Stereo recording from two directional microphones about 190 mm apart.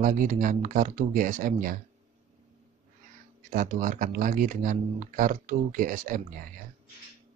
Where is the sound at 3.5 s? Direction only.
45° right (ahead or behind).